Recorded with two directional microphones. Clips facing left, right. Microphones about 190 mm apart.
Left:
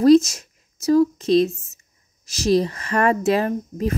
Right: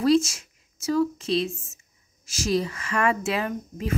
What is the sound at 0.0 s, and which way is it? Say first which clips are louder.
A woman's voice: left 7 dB; 40° left (ahead or behind).